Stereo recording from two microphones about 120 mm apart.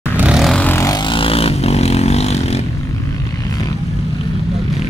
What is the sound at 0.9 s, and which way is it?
Vehicle, 45° left (ahead or behind).